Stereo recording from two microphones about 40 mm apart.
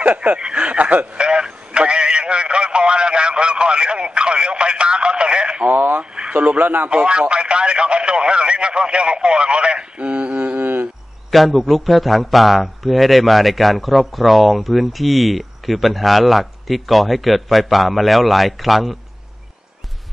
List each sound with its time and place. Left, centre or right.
0.0 s snicker: right
1.2 s a sound: right
5.8 s radio: right
6.3 s speech: right
6.9 s radio: right
11.2 s a man's voice: centre